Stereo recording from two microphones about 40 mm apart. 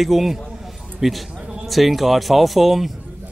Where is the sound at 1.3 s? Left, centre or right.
Right.